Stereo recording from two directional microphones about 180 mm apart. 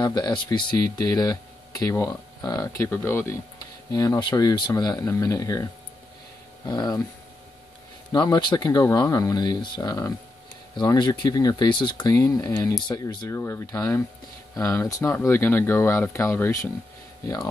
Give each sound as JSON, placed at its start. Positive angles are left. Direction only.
{"t": 0.0, "sound": "speech", "side_deg": 25}
{"t": 8.1, "sound": "speech", "side_deg": 25}